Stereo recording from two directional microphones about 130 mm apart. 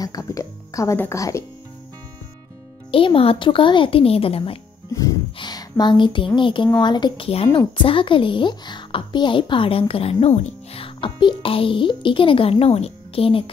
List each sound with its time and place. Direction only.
0.0 s speech: 25° left (ahead or behind)
2.9 s speech: 45° left (ahead or behind)
4.9 s a woman's voice: 30° left (ahead or behind); by 13.5 s 45° left (ahead or behind)